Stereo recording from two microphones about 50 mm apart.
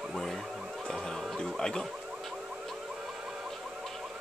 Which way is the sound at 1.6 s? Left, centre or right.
Centre.